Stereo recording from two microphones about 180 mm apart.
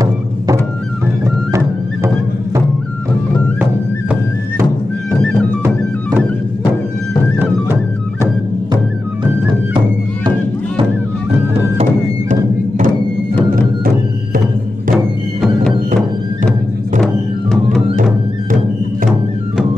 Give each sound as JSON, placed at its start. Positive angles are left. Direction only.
{"t": 5.6, "sound": "music", "side_deg": -15}
{"t": 11.8, "sound": "music", "side_deg": -45}
{"t": 17.0, "sound": "music", "side_deg": 0}